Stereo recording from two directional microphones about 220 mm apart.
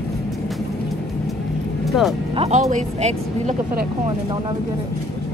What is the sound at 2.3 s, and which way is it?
Speech, 25° right (ahead or behind).